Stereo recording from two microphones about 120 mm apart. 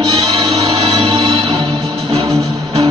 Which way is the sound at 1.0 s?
50° right (ahead or behind).